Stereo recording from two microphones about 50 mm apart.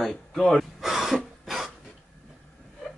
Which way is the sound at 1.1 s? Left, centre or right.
Centre.